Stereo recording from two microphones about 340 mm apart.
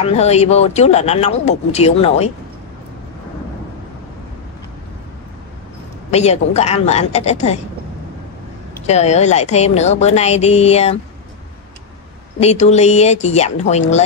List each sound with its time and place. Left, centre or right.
0.0 s a woman's voice: centre
6.0 s a woman's voice: centre
8.8 s a woman's voice: centre
12.4 s a woman's voice: centre